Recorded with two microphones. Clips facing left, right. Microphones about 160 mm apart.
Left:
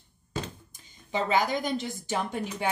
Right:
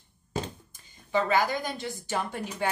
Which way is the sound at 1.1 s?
20° left (ahead or behind).